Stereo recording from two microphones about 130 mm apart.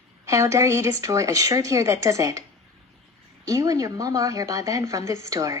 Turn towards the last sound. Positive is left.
turn(degrees=-25)  # may be behind; listen again after turning